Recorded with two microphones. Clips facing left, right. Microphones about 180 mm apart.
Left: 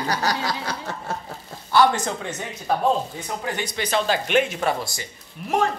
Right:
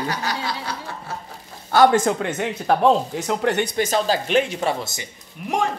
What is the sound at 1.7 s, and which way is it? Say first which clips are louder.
Speech: right 4 dB; 50° right (ahead or behind).